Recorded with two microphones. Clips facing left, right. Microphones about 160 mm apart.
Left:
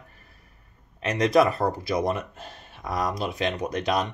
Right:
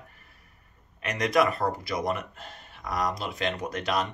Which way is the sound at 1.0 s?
25° left (ahead or behind).